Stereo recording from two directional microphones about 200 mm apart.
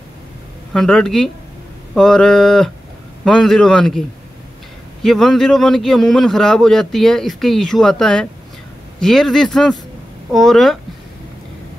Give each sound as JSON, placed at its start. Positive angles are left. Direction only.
{"t": 0.7, "sound": "a man's voice", "side_deg": 5}
{"t": 5.0, "sound": "a man's voice", "side_deg": 0}